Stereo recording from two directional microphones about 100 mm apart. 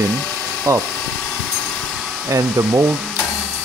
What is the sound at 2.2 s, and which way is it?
Speech, 30° right (ahead or behind).